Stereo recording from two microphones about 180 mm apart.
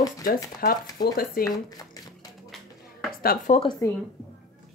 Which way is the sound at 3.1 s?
55° left (ahead or behind).